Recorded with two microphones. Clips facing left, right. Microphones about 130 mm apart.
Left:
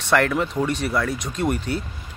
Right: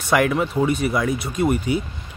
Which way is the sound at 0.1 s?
10° right (ahead or behind).